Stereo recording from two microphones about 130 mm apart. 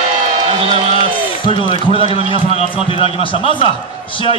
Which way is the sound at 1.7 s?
45° left (ahead or behind).